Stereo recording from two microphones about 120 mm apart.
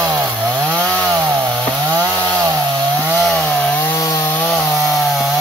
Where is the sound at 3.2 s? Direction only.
Centre (ahead or behind).